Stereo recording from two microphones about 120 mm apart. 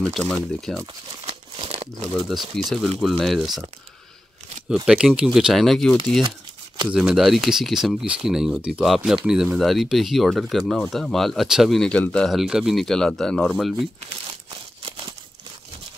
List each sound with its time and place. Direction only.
0.0 s speech: 5° left (ahead or behind)
1.2 s crumpling: 55° right (ahead or behind)
2.1 s speech: centre (ahead or behind)
4.8 s speech: 5° right (ahead or behind)
14.8 s crumpling: 45° right (ahead or behind)